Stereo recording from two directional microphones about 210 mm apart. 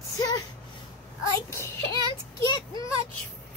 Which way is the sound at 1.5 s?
15° left (ahead or behind).